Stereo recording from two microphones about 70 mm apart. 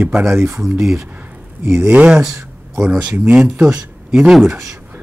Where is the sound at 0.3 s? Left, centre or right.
Right.